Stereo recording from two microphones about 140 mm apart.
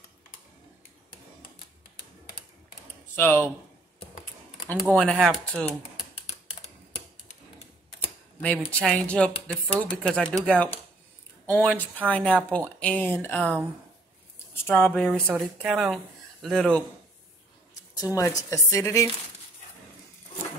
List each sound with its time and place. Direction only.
3.2 s speech: 15° left (ahead or behind)
4.8 s speech: 5° left (ahead or behind)
8.4 s speech: 10° left (ahead or behind)
14.7 s speech: 10° left (ahead or behind)
18.0 s speech: 20° left (ahead or behind)